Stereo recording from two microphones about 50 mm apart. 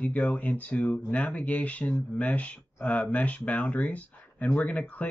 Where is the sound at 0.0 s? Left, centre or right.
Left.